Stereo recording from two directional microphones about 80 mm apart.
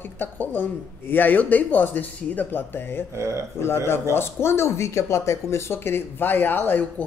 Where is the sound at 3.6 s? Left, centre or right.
Left.